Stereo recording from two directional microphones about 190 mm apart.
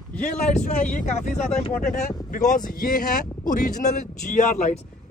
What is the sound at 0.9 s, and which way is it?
Speech, 40° left (ahead or behind).